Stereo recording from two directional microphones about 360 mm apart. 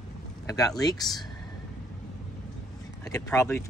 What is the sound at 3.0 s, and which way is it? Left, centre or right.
Speech, centre.